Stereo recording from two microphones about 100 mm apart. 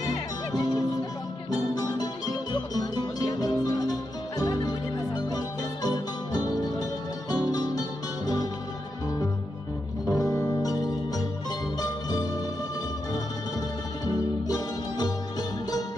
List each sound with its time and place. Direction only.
0.0 s music: 40° left (ahead or behind)
10.0 s music: 35° left (ahead or behind)
14.0 s music: 40° left (ahead or behind)